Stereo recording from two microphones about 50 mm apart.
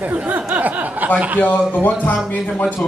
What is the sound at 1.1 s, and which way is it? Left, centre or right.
Speech, right.